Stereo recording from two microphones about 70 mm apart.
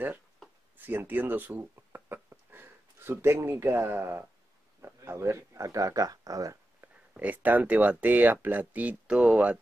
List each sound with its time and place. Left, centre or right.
0.7 s speech: right
2.2 s a sound: right
4.8 s speech: right
6.8 s speech: right